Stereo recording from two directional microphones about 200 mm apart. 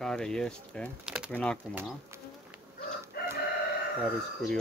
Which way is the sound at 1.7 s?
10° right (ahead or behind).